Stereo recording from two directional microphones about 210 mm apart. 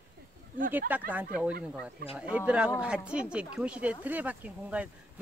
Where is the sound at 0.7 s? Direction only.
10° right (ahead or behind).